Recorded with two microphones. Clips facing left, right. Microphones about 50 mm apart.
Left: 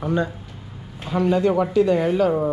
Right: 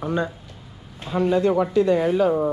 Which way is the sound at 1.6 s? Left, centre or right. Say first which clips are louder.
Left 1 dB; left.